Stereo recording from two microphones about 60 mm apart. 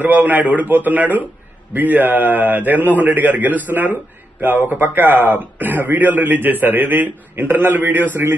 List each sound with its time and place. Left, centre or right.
0.0 s a man's voice: right